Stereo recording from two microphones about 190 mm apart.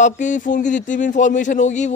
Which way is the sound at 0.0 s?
40° left (ahead or behind).